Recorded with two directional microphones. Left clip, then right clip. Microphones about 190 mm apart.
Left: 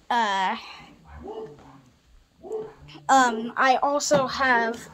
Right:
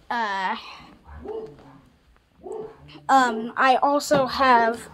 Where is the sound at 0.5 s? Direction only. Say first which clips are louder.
Even; 10° left (ahead or behind).